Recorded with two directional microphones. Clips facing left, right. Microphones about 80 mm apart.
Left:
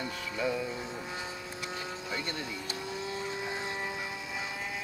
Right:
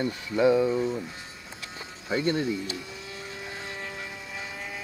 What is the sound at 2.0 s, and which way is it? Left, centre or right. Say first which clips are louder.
Speech: right 14 dB; right.